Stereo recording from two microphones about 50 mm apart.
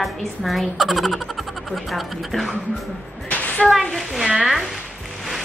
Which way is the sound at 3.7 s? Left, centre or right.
Centre.